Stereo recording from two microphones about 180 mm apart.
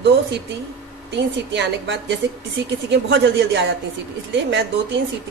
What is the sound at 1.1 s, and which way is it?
A woman's voice, 75° right (ahead or behind).